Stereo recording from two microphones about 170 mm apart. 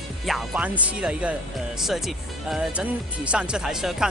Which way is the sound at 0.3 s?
Centre (ahead or behind).